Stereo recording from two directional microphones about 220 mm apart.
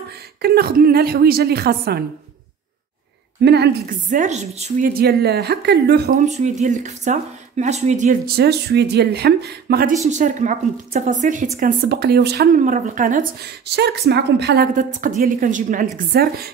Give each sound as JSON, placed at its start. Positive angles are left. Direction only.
{"t": 0.4, "sound": "a woman's voice", "side_deg": -45}
{"t": 3.3, "sound": "a woman's voice", "side_deg": -50}
{"t": 10.0, "sound": "a woman's voice", "side_deg": -35}
{"t": 11.6, "sound": "a woman's voice", "side_deg": -45}